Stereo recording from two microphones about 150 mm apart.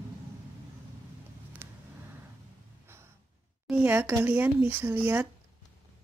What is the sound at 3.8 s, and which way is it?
Speech, 15° right (ahead or behind).